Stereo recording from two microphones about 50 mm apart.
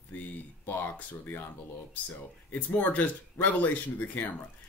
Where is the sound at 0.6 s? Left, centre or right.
Left.